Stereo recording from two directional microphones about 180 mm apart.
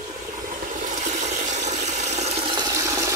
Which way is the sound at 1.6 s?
40° right (ahead or behind).